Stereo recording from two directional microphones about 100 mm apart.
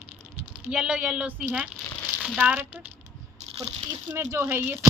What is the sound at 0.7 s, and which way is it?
Speech, 10° right (ahead or behind).